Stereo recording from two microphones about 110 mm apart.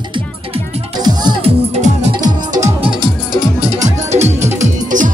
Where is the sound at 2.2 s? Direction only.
35° right (ahead or behind).